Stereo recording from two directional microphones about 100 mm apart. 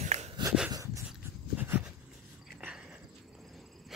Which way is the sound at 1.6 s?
15° right (ahead or behind).